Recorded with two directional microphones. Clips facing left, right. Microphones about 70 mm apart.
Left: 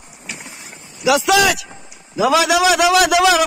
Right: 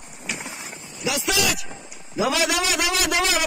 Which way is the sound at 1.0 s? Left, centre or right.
Left.